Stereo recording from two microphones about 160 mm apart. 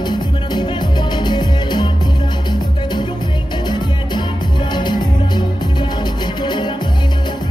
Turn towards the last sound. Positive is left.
turn(degrees=30)  # may be behind; listen again after turning